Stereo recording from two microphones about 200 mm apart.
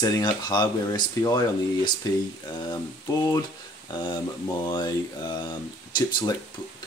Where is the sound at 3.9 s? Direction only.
20° left (ahead or behind).